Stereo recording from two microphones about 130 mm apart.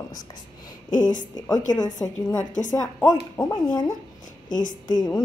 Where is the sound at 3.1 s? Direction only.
25° left (ahead or behind).